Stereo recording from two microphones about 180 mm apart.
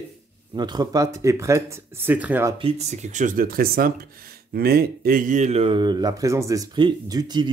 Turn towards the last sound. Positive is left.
turn(degrees=-25)  # may be behind; listen again after turning